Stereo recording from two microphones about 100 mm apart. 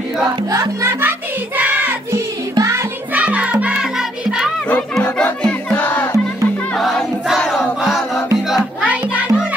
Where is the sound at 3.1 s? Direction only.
15° right (ahead or behind).